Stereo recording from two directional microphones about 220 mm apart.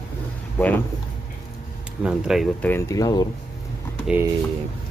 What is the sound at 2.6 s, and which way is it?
Speech, 10° left (ahead or behind).